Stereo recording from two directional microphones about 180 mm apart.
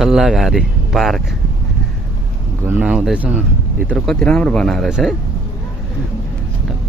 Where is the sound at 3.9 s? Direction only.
5° left (ahead or behind).